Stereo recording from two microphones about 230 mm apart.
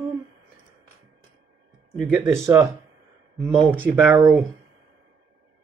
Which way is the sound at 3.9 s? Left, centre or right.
Centre.